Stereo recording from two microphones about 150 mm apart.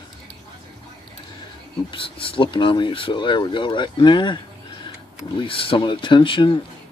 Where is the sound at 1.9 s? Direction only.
35° left (ahead or behind).